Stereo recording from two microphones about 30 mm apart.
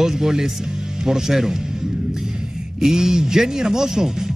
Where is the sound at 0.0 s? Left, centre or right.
Centre.